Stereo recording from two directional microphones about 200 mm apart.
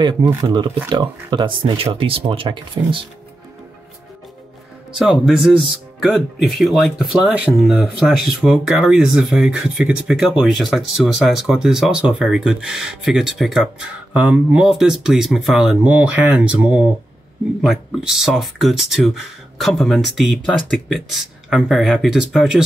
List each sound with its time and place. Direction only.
0.3 s speech: 20° right (ahead or behind)
4.9 s speech: centre (ahead or behind)